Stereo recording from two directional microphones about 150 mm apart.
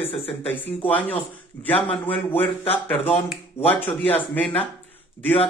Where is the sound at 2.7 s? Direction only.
15° left (ahead or behind).